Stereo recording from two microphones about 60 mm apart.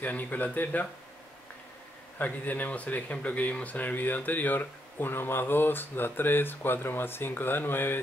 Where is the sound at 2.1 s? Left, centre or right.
Left.